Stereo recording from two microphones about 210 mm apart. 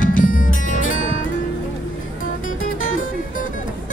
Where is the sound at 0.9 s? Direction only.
70° left (ahead or behind).